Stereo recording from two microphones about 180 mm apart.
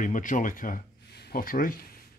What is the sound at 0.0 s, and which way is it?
Speech, 45° left (ahead or behind).